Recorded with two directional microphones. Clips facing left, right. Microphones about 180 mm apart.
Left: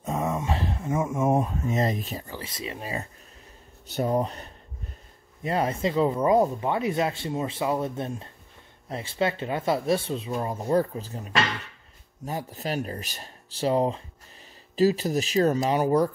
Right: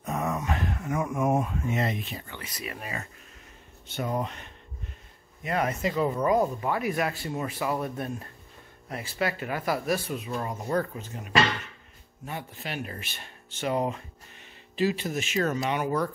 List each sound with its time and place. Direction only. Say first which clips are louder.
0.0 s speech: left 2 dB; 25° left (ahead or behind)